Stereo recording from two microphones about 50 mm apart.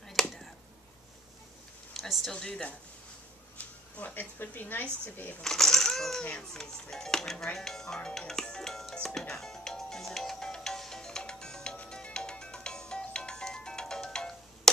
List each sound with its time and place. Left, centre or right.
0.1 s a sound: centre
2.0 s a sound: centre
2.3 s a woman's voice: centre
3.5 s speech: left
5.4 s a child's voice: centre
8.9 s music: centre